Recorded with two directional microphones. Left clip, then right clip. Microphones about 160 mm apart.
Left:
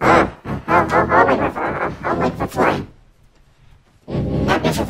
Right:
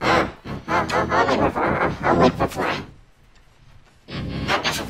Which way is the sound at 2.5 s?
15° left (ahead or behind).